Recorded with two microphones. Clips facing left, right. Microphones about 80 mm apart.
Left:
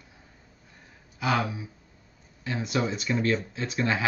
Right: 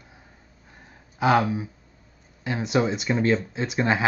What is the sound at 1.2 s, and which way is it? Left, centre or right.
Speech, right.